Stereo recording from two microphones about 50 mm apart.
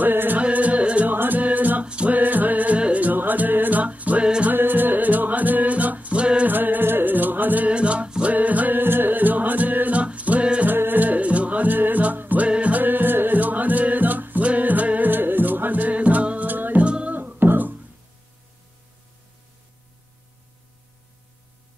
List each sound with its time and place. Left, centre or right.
0.0 s music: right
0.4 s music: right
1.1 s music: right
1.9 s music: right
2.1 s music: right
4.5 s music: right
6.4 s music: right
7.7 s music: right
10.7 s music: right
12.4 s music: right
12.8 s music: right
16.8 s music: right
17.1 s music: right